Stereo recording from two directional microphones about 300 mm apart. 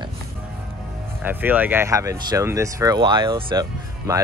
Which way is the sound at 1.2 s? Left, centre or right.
Centre.